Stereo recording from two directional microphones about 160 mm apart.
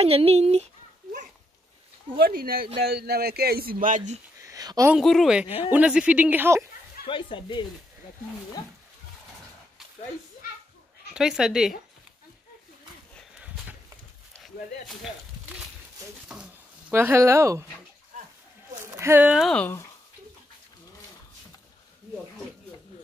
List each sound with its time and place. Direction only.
0.0 s speech: 40° right (ahead or behind)
2.1 s speech: 70° right (ahead or behind)
2.8 s speech: 85° right; by 4.2 s 50° right (ahead or behind)
4.4 s a sound: 20° right (ahead or behind)
4.9 s speech: centre (ahead or behind)
7.1 s speech: 30° left (ahead or behind)
11.1 s speech: 5° right (ahead or behind)
16.3 s a sound: 5° right (ahead or behind)
16.9 s speech: 15° right (ahead or behind)
18.9 s speech: 15° right (ahead or behind)
19.5 s speech: 10° left (ahead or behind)